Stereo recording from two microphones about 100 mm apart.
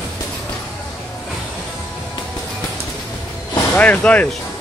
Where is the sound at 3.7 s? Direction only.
15° left (ahead or behind).